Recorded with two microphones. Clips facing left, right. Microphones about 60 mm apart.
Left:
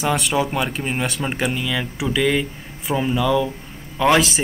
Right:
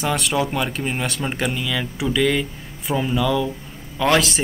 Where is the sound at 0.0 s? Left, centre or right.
Centre.